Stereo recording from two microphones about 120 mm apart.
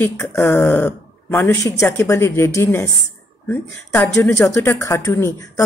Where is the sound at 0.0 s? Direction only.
20° left (ahead or behind).